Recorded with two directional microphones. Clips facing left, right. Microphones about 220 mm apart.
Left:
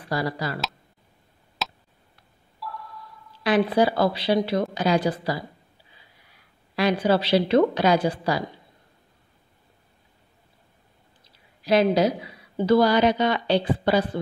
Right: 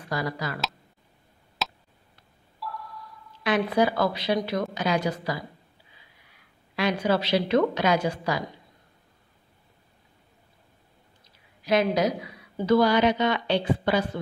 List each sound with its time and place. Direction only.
0.1 s a woman's voice: 30° left (ahead or behind)
1.6 s tick: centre (ahead or behind)
2.6 s a sound: centre (ahead or behind)
3.4 s a woman's voice: 30° left (ahead or behind)
6.7 s a woman's voice: 35° left (ahead or behind)
11.6 s a woman's voice: 30° left (ahead or behind)